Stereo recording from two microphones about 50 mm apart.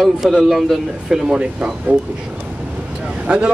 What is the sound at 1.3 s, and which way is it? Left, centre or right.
Speech, centre.